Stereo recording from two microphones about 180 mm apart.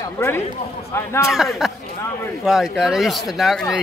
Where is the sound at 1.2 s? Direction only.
Centre (ahead or behind).